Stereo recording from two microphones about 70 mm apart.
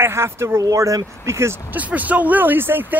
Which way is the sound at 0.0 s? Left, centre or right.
Right.